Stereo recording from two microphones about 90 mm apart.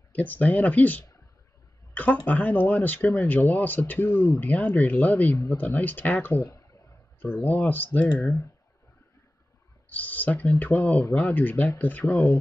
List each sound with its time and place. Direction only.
0.1 s speech: 20° left (ahead or behind)
8.2 s speech: 35° left (ahead or behind)
9.8 s speech: 20° left (ahead or behind)
12.1 s speech: 30° left (ahead or behind)